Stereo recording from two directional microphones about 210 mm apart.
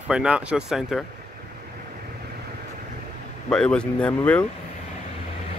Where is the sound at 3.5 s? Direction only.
5° left (ahead or behind).